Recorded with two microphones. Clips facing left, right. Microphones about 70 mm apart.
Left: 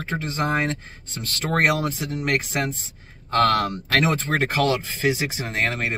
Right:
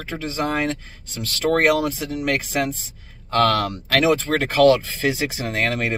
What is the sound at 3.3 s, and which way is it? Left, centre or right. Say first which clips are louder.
Speech: right 1 dB; left.